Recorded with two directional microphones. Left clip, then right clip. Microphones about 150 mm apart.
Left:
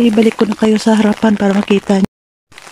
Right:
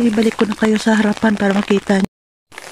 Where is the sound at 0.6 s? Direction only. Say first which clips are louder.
Left 3 dB; 10° left (ahead or behind).